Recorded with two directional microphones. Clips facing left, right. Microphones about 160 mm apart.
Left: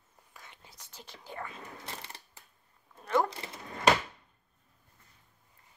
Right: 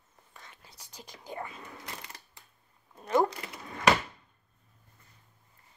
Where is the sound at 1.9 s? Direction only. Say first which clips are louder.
Even; 30° left (ahead or behind).